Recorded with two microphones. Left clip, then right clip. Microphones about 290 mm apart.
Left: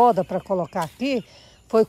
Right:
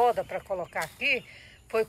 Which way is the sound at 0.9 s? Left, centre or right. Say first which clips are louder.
Left 2 dB; left.